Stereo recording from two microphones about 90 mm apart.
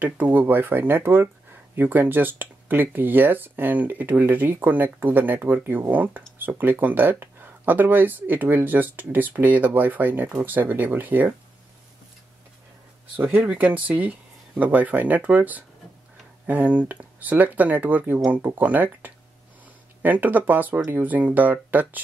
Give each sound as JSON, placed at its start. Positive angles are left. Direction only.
{"t": 0.0, "sound": "speech", "side_deg": -20}
{"t": 13.1, "sound": "speech", "side_deg": -20}